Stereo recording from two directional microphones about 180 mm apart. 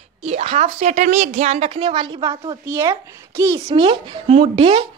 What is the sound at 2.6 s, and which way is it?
A child's voice, 15° right (ahead or behind).